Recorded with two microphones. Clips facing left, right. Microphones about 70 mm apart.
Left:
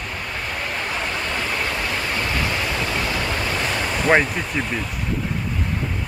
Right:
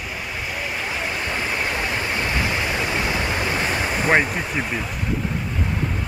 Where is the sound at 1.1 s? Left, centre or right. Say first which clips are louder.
Even; centre.